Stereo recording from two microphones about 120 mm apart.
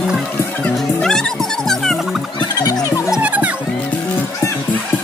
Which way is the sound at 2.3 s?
35° left (ahead or behind).